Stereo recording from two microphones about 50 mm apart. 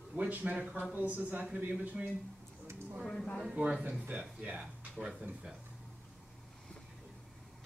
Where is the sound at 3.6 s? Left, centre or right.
Right.